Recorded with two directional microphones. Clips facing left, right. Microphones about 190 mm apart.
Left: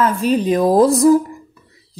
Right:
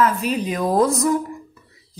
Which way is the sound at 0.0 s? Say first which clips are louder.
Left 4 dB; 30° left (ahead or behind).